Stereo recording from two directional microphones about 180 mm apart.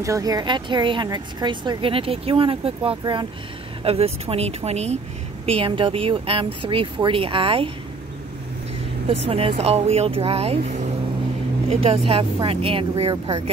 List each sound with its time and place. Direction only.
0.0 s speech: 20° right (ahead or behind)
9.0 s speech: 35° right (ahead or behind)